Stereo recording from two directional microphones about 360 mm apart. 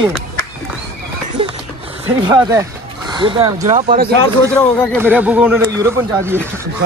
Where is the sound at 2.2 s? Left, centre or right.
Centre.